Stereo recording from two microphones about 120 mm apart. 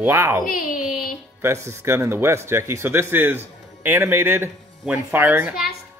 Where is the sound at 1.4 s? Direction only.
25° right (ahead or behind).